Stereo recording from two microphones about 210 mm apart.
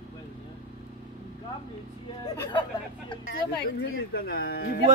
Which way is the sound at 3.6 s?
50° left (ahead or behind).